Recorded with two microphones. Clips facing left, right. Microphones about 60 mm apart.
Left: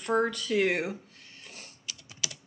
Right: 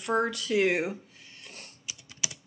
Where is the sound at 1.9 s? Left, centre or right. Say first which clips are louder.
Even; centre.